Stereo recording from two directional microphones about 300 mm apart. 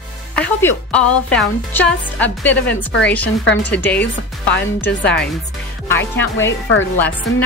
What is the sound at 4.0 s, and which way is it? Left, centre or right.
Speech, left.